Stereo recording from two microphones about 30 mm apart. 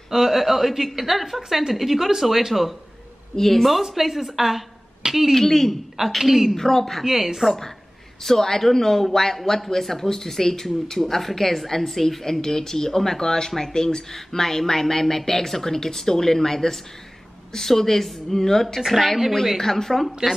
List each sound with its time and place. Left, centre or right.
0.1 s a woman's voice: centre
3.3 s speech: centre
3.8 s speech: centre
5.3 s speech: centre
5.9 s a woman's voice: centre
6.5 s speech: centre
7.4 s a woman's voice: right
8.2 s speech: centre
18.9 s a woman's voice: centre